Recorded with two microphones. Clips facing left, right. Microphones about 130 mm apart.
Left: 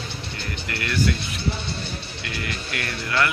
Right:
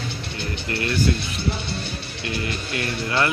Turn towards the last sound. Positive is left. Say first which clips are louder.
# right 2 dB
turn(degrees=-25)  # may be behind; listen again after turning